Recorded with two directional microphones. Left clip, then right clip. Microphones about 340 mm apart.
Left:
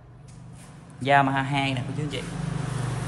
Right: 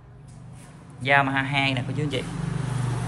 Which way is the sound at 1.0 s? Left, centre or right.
Centre.